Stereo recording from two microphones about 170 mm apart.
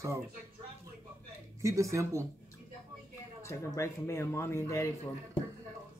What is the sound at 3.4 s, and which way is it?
Speech, 15° left (ahead or behind).